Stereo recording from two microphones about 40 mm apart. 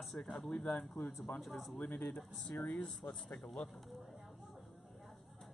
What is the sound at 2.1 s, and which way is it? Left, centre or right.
Speech, centre.